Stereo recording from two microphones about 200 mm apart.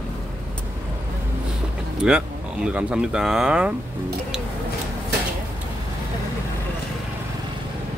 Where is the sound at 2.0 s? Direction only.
5° right (ahead or behind).